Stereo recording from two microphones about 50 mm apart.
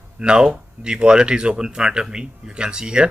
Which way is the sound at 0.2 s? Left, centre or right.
Centre.